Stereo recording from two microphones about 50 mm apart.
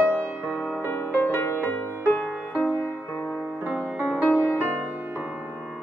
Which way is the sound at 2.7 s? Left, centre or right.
Left.